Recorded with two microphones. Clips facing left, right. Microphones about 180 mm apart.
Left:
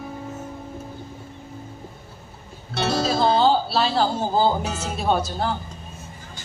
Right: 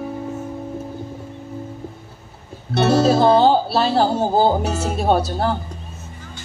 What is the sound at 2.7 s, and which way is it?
Speech, 60° right (ahead or behind).